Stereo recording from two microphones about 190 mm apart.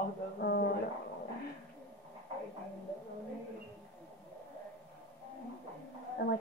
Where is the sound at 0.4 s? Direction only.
60° left (ahead or behind).